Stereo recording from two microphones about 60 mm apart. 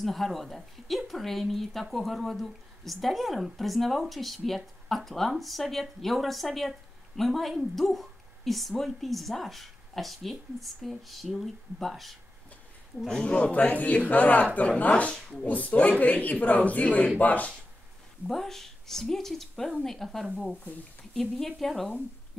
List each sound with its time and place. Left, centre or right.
0.0 s speech: centre
13.0 s a man's voice: centre
18.3 s speech: centre